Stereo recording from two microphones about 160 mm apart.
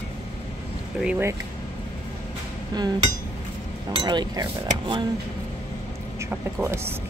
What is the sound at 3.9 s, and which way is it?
Speech, 30° right (ahead or behind).